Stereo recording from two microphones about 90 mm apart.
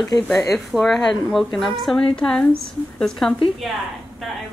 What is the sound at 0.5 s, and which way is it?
A woman's voice, centre (ahead or behind).